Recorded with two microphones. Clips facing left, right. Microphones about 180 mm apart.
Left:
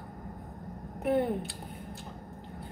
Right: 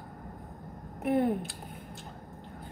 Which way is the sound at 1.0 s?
Centre (ahead or behind).